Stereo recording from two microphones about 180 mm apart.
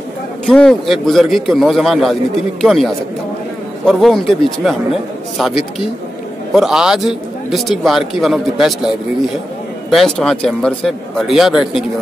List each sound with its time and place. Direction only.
0.5 s a man's voice: centre (ahead or behind)
9.8 s a man's voice: centre (ahead or behind)